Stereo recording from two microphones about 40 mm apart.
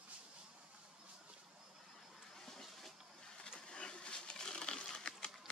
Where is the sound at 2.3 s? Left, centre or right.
Centre.